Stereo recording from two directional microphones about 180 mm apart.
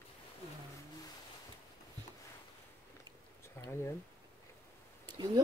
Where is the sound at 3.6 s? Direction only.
10° left (ahead or behind).